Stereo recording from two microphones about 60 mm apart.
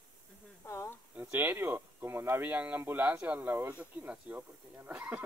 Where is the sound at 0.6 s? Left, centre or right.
Left.